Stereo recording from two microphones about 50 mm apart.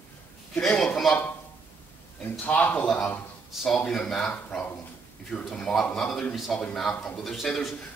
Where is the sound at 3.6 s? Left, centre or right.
Centre.